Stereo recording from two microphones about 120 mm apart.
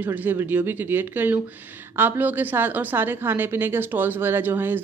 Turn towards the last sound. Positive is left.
turn(degrees=-15)  # may be behind; listen again after turning